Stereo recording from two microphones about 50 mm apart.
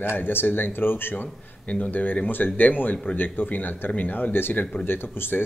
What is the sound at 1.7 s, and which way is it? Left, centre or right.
Speech, left.